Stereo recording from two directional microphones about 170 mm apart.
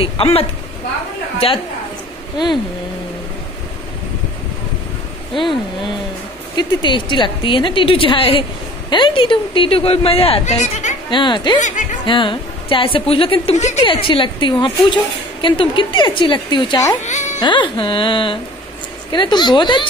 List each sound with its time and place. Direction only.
0.0 s speech: 35° left (ahead or behind)
2.3 s a woman's voice: 25° left (ahead or behind)
6.5 s a woman's voice: 25° left (ahead or behind); by 11.0 s 45° left (ahead or behind)
11.1 s a woman's voice: 25° left (ahead or behind)
11.6 s speech: 45° left (ahead or behind)
12.1 s a woman's voice: 30° left (ahead or behind)
17.0 s speech: 45° left (ahead or behind)
17.4 s a woman's voice: 30° left (ahead or behind)